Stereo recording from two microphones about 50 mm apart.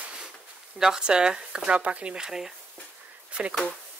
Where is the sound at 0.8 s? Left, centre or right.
Centre.